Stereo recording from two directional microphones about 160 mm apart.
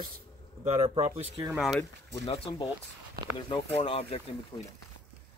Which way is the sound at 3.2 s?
75° right (ahead or behind).